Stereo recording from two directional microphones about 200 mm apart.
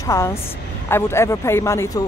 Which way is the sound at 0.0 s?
15° left (ahead or behind).